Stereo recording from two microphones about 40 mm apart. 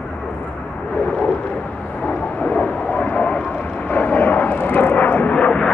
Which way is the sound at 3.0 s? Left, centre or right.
Left.